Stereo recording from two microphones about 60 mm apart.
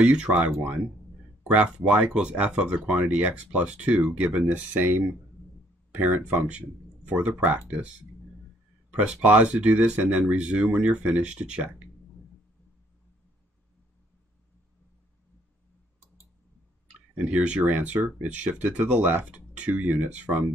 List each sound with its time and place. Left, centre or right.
0.0 s speech: centre
1.5 s speech: right
5.9 s speech: right
8.9 s speech: right
17.2 s speech: right